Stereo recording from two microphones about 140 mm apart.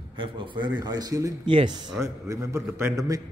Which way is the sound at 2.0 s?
20° right (ahead or behind).